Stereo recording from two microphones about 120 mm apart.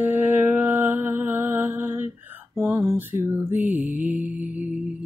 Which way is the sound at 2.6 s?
25° right (ahead or behind).